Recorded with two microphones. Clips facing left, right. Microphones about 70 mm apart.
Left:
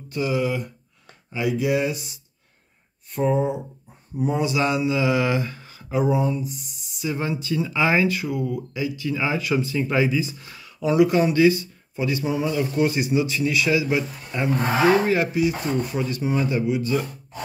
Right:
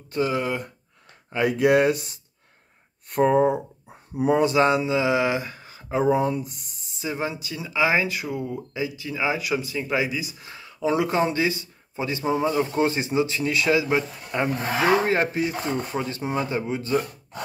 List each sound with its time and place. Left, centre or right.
0.1 s speech: right
4.2 s mantra: right; by 5.9 s centre
5.9 s speech: right
6.1 s speech: right
7.4 s speech: centre
8.2 s speech: right; by 10.3 s centre
10.4 s speech: right